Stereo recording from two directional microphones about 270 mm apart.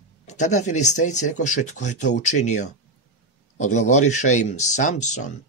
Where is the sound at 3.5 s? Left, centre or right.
Left.